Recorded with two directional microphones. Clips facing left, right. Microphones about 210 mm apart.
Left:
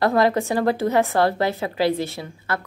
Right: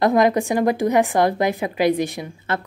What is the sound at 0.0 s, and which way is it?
A woman's voice, 15° right (ahead or behind).